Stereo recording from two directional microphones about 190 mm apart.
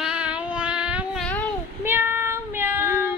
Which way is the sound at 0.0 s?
5° right (ahead or behind).